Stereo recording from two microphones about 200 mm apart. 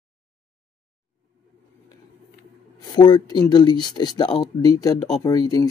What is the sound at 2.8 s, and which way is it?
Speech, 20° left (ahead or behind).